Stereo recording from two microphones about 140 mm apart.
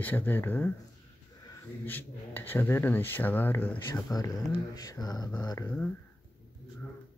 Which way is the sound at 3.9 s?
25° left (ahead or behind).